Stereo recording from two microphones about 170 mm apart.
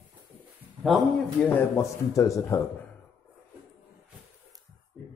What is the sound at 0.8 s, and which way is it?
Speech, centre (ahead or behind).